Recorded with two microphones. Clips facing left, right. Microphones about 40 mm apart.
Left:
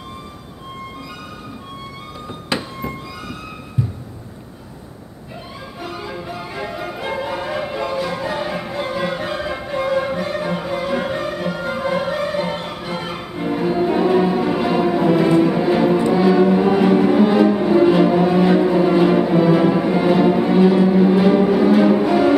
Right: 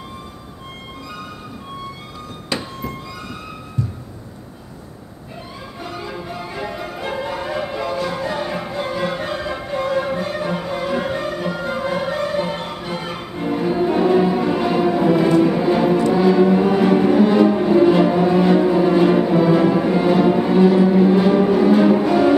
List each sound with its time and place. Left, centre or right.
2.5 s music: left
5.8 s music: centre